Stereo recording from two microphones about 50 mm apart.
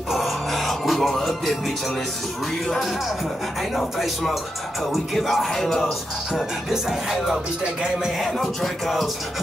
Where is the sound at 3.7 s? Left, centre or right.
Centre.